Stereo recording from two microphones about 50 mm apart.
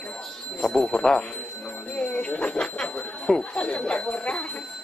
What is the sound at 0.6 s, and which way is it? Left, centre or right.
Speech, centre.